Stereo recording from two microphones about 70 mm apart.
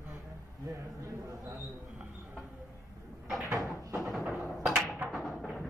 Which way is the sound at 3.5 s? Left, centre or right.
Right.